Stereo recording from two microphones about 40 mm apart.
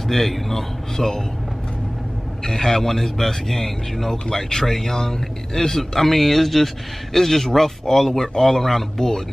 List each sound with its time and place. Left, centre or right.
0.1 s a man's voice: centre
2.4 s a man's voice: centre